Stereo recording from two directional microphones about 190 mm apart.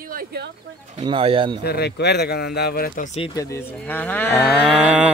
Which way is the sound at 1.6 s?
60° left (ahead or behind).